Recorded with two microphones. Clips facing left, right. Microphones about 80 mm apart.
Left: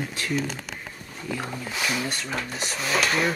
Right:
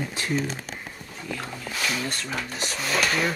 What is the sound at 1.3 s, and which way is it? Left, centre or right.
Speech, centre.